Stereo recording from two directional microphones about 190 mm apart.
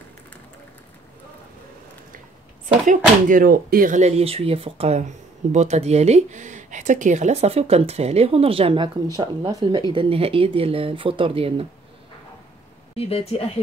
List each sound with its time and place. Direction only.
2.9 s speech: 45° right (ahead or behind); by 11.6 s 30° right (ahead or behind)
12.9 s speech: 30° left (ahead or behind)